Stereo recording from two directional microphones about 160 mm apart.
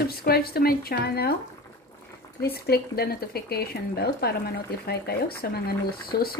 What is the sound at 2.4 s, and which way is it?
Speech, 80° left.